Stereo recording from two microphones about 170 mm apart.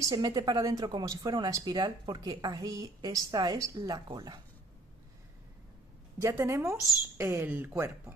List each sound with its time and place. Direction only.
0.0 s speech: 20° right (ahead or behind)
6.1 s a woman's voice: 20° right (ahead or behind)